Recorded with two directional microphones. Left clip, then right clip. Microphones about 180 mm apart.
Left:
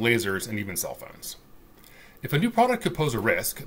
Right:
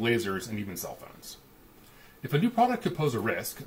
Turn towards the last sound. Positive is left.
turn(degrees=10)  # may be behind; listen again after turning